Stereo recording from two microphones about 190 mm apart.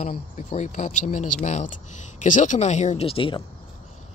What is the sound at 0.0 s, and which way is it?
Speech, 40° left (ahead or behind).